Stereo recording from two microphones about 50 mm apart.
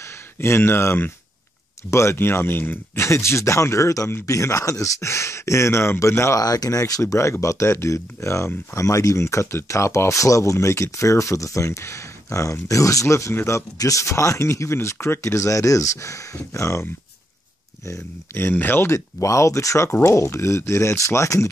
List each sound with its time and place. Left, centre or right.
0.4 s speech: left
1.9 s speech: left
2.1 s speech: left
3.0 s speech: left
8.7 s speech: left
13.4 s speech: left
17.8 s speech: left
18.5 s speech: left
18.9 s speech: left
19.9 s speech: left